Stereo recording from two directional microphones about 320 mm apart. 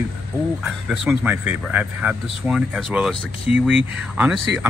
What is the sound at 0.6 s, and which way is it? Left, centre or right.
Speech, centre.